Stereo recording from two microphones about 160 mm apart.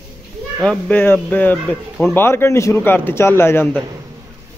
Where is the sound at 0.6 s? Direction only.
10° left (ahead or behind).